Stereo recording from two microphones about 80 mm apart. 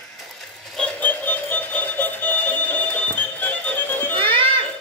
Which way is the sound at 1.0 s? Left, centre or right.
Left.